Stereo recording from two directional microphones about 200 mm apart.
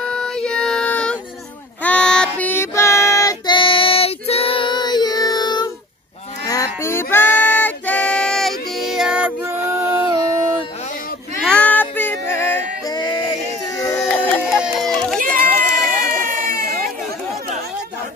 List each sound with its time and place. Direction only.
0.0 s music: 5° left (ahead or behind)
1.8 s child singing: 5° left (ahead or behind)
6.4 s music: 15° left (ahead or behind); by 9.6 s 10° right (ahead or behind)
11.4 s music: 5° left (ahead or behind)
13.7 s a sound: 15° left (ahead or behind)
14.4 s music: centre (ahead or behind)
15.1 s run: 45° right (ahead or behind)
15.9 s a sound: 45° right (ahead or behind)